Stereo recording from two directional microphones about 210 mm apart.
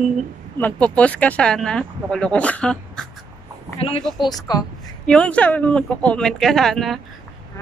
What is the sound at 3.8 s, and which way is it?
Speech, 25° left (ahead or behind).